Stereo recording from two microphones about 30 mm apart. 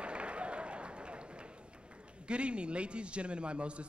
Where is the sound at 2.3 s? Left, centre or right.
Right.